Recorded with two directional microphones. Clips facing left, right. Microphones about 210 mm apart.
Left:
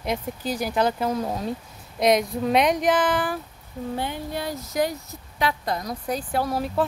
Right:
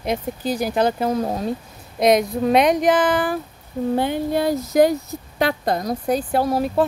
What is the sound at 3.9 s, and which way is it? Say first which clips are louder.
Speech: right 9 dB; 80° right.